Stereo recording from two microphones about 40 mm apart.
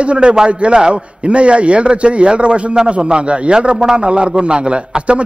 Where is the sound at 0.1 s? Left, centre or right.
Right.